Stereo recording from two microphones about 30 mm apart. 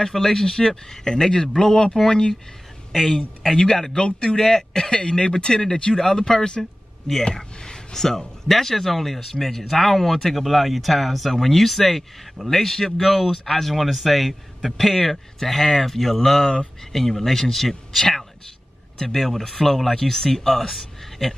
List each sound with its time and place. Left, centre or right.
0.0 s speech: centre
2.9 s speech: centre
3.5 s speech: centre
3.9 s speech: left; by 13.7 s centre
13.7 s speech: centre
19.0 s speech: centre